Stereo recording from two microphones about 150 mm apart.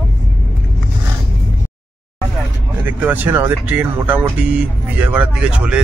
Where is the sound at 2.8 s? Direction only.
10° right (ahead or behind).